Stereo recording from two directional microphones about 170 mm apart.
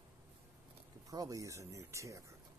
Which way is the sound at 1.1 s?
20° right (ahead or behind).